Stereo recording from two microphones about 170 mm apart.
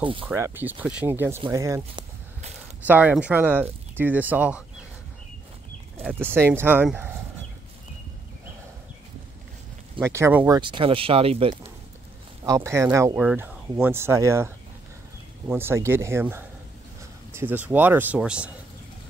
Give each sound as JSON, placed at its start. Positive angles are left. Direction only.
{"t": 0.0, "sound": "speech", "side_deg": -30}
{"t": 0.3, "sound": "speech", "side_deg": -10}
{"t": 6.0, "sound": "speech", "side_deg": -10}
{"t": 9.9, "sound": "speech", "side_deg": -15}
{"t": 10.6, "sound": "speech", "side_deg": -30}
{"t": 12.4, "sound": "speech", "side_deg": -15}